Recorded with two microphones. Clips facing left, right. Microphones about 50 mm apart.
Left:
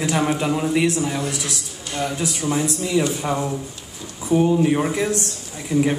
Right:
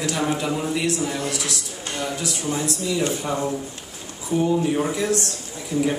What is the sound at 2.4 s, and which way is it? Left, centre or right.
A man's voice, left.